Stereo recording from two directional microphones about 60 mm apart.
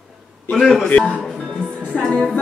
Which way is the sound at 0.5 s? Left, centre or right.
Centre.